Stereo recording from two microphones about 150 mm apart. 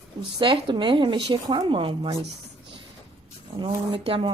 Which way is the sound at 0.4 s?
35° right (ahead or behind).